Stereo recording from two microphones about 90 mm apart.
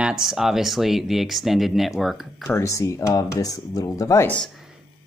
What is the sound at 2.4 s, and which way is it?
Speech, 35° left (ahead or behind).